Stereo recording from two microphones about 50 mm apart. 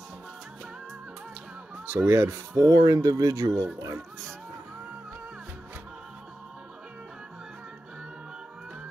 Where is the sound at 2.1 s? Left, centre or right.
Right.